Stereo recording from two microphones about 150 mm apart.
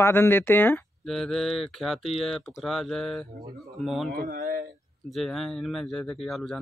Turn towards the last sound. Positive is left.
turn(degrees=0)  # may be behind; listen again after turning